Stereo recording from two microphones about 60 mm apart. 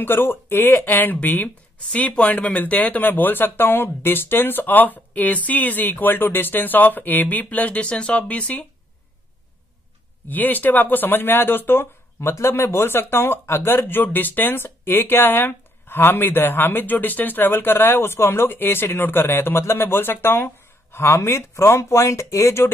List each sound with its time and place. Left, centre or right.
0.0 s speech: left
10.2 s speech: left